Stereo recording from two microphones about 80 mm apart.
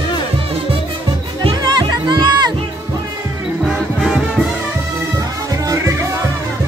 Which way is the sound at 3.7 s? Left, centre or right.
Centre.